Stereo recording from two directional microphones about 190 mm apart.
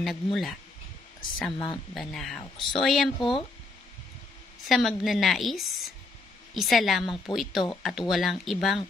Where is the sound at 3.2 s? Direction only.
25° left (ahead or behind).